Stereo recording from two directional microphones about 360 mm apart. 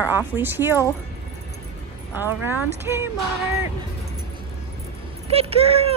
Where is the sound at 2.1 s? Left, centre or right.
Centre.